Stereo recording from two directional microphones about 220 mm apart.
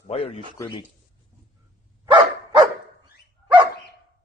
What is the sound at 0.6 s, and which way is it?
Speech, 20° left (ahead or behind).